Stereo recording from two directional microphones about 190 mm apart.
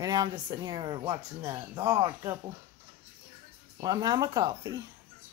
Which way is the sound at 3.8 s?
20° right (ahead or behind).